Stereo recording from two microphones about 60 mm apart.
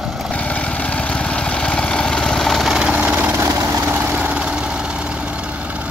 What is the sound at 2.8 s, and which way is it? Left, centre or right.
Vehicle, centre.